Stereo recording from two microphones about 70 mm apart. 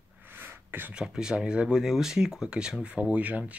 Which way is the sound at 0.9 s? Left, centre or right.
Centre.